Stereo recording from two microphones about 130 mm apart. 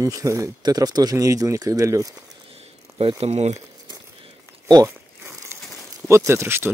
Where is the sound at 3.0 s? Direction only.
45° right (ahead or behind).